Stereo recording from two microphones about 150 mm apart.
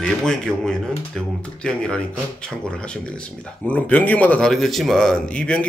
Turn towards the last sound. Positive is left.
turn(degrees=10)  # may be behind; listen again after turning